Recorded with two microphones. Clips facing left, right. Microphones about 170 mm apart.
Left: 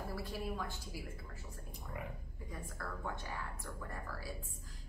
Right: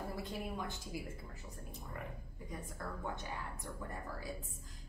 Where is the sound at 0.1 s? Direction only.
20° right (ahead or behind).